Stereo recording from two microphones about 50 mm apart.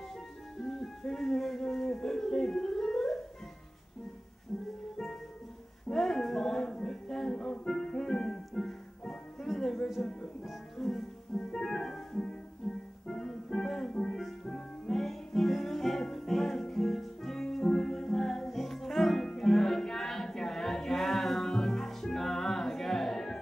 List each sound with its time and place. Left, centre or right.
0.6 s music: centre
5.9 s a sound: centre
7.6 s music: centre